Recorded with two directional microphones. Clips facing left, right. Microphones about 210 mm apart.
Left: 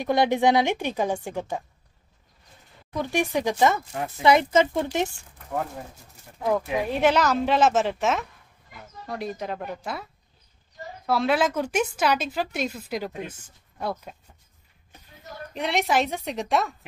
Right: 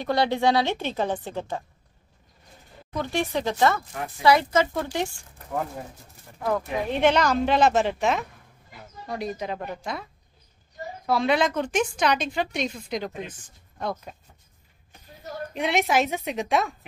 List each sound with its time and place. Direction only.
0.0 s a woman's voice: 15° left (ahead or behind)
3.0 s speech: 15° left (ahead or behind)
6.5 s speech: 5° left (ahead or behind)
11.1 s speech: 5° left (ahead or behind)
15.5 s speech: centre (ahead or behind)